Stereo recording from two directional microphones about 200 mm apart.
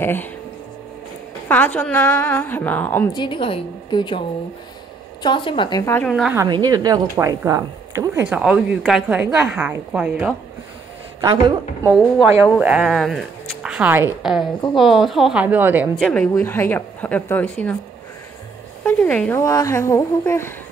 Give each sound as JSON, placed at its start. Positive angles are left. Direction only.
{"t": 0.0, "sound": "speech", "side_deg": 10}
{"t": 1.5, "sound": "speech", "side_deg": 10}
{"t": 3.1, "sound": "a woman's voice", "side_deg": 25}
{"t": 5.2, "sound": "a woman's voice", "side_deg": 25}
{"t": 6.3, "sound": "a woman's voice", "side_deg": -20}
{"t": 11.1, "sound": "speech", "side_deg": -20}
{"t": 11.9, "sound": "a woman's voice", "side_deg": -5}
{"t": 16.1, "sound": "speech", "side_deg": 10}
{"t": 18.9, "sound": "speech", "side_deg": 5}